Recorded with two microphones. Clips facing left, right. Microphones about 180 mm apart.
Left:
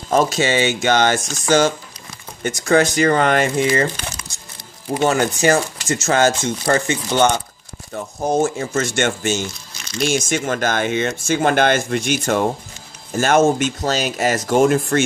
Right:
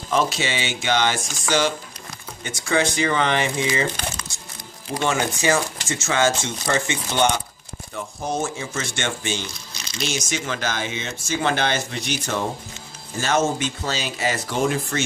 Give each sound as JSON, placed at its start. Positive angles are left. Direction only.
{"t": 0.1, "sound": "speech", "side_deg": 45}
{"t": 5.0, "sound": "speech", "side_deg": 40}